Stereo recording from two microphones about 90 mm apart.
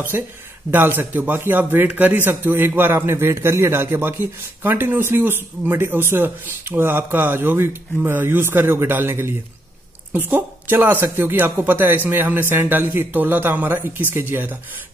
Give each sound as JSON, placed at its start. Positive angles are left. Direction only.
{"t": 0.1, "sound": "a man's voice", "side_deg": -25}